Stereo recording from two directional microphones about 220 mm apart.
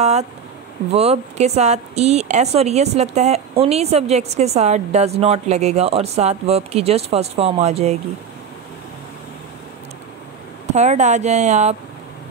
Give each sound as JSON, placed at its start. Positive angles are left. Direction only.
{"t": 0.0, "sound": "speech", "side_deg": -30}
{"t": 10.7, "sound": "speech", "side_deg": -30}